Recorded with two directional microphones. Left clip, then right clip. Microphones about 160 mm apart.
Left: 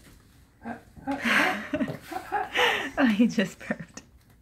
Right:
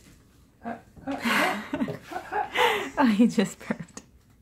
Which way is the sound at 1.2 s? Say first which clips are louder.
Left 1 dB; 20° right (ahead or behind).